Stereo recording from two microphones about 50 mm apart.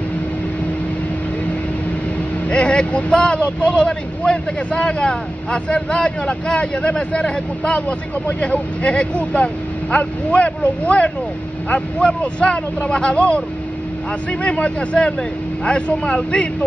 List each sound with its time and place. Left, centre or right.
2.4 s a man's voice: left
14.4 s a man's voice: left